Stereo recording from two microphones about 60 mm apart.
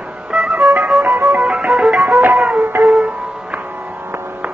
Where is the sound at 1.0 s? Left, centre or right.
Right.